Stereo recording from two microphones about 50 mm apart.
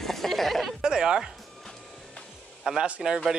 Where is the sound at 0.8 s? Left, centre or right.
Centre.